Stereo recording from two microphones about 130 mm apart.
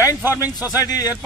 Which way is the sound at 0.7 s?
25° left (ahead or behind).